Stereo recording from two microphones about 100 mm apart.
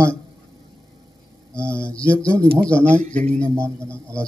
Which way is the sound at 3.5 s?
30° right (ahead or behind).